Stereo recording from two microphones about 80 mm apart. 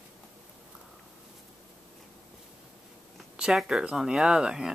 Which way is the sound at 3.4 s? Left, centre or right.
Centre.